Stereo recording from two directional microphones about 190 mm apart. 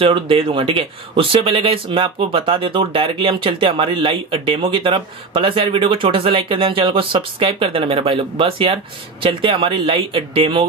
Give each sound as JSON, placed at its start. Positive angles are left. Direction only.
{"t": 0.0, "sound": "speech", "side_deg": -30}